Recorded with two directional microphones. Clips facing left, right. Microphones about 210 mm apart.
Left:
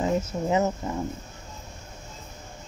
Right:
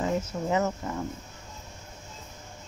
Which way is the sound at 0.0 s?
25° left (ahead or behind).